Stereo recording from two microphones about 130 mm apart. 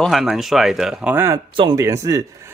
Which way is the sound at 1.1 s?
20° right (ahead or behind).